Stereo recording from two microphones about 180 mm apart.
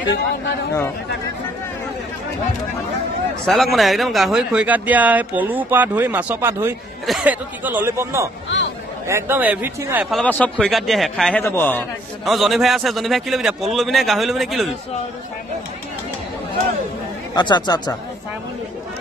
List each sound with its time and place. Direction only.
3.4 s speech: centre (ahead or behind)
10.1 s a man's voice: 10° left (ahead or behind)
12.3 s a man's voice: centre (ahead or behind)
17.3 s speech: 25° left (ahead or behind)